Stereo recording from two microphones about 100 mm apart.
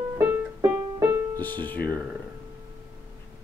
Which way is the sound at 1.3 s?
20° left (ahead or behind).